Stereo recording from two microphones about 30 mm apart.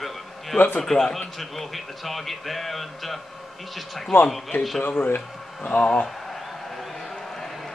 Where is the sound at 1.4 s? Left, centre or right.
Centre.